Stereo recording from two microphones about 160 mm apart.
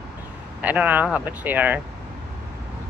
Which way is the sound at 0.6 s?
10° right (ahead or behind).